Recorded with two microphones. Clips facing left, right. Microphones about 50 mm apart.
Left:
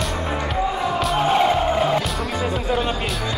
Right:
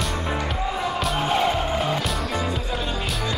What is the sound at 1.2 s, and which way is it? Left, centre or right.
Music, centre.